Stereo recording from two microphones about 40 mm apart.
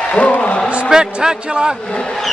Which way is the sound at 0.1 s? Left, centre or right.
Left.